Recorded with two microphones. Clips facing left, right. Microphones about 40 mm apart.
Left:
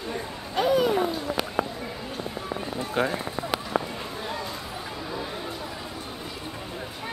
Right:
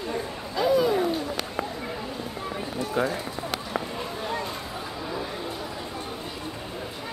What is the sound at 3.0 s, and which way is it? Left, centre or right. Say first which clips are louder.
Run: even; left.